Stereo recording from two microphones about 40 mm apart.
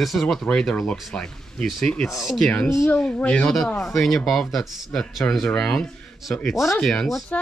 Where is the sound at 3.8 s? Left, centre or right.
Centre.